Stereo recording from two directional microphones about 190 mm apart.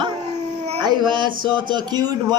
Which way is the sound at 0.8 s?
25° right (ahead or behind).